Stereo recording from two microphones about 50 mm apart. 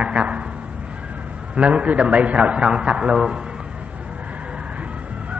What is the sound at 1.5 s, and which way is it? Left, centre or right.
Speech, right.